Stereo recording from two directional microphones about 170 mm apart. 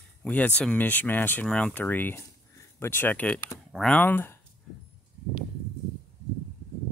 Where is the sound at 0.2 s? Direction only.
10° left (ahead or behind).